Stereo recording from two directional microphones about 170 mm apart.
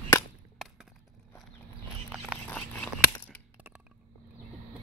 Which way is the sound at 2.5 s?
10° left (ahead or behind).